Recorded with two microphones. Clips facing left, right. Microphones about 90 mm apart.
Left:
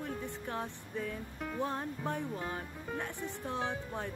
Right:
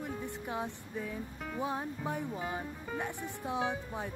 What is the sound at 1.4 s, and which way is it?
Music, centre (ahead or behind).